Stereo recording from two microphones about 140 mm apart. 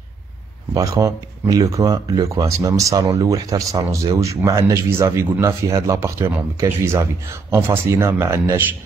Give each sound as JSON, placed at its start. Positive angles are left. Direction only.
{"t": 0.7, "sound": "speech", "side_deg": -25}